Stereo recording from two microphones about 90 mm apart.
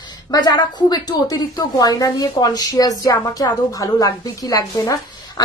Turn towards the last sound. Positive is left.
turn(degrees=40)  # may be behind; listen again after turning